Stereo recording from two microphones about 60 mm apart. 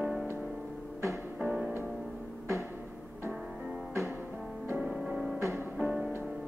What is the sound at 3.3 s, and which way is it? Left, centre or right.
Music, centre.